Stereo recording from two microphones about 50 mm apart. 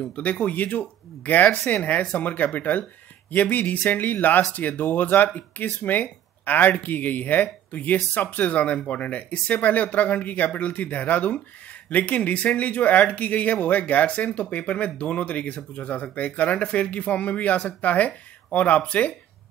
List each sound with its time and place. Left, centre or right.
0.1 s speech: left